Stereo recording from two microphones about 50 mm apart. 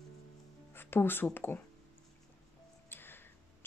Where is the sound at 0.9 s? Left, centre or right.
Left.